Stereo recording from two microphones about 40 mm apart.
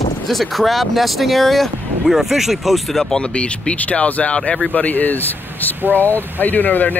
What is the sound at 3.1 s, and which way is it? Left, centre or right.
Speech, left.